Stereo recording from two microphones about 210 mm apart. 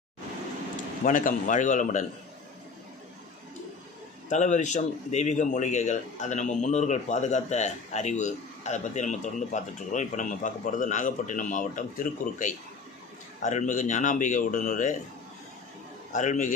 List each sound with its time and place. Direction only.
1.0 s a man's voice: 40° left (ahead or behind)
4.3 s a man's voice: 35° left (ahead or behind)
16.1 s a man's voice: 35° left (ahead or behind)